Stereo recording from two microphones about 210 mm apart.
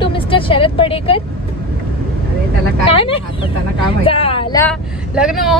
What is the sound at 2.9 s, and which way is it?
Speech, 25° left (ahead or behind).